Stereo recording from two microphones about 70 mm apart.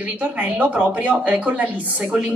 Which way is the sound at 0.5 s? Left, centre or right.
Centre.